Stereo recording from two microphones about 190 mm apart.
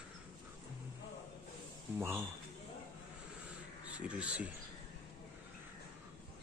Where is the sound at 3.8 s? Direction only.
5° right (ahead or behind).